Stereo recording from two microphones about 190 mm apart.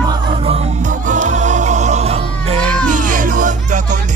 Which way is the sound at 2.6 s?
5° left (ahead or behind).